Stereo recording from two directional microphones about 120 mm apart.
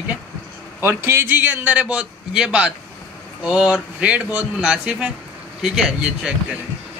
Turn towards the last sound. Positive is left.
turn(degrees=-5)  # may be behind; listen again after turning